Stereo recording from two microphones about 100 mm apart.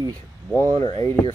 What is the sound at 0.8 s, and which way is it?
Speech, 45° left (ahead or behind).